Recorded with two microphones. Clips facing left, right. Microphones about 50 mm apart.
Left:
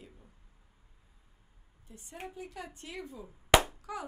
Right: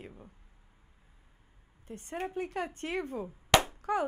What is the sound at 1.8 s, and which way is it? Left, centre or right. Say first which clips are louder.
A woman's voice: right 8 dB; right.